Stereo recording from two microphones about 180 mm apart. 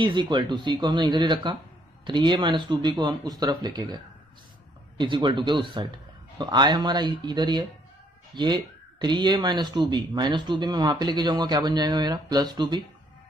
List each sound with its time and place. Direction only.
0.0 s speech: 25° right (ahead or behind)
9.0 s speech: 25° right (ahead or behind)